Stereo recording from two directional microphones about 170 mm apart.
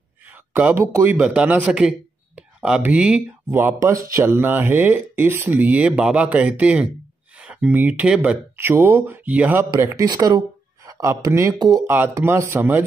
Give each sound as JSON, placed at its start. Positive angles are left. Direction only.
{"t": 0.3, "sound": "a man's voice", "side_deg": -10}
{"t": 11.8, "sound": "speech", "side_deg": -15}